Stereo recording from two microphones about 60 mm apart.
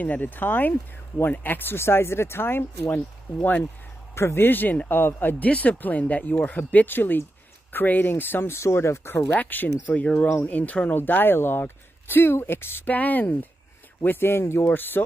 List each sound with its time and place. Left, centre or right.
0.0 s speech: left
4.1 s speech: left
5.5 s speech: left
9.3 s speech: left
10.2 s speech: left
10.5 s speech: left
12.9 s speech: left